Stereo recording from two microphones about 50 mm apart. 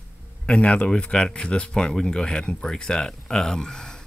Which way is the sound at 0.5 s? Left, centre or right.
Left.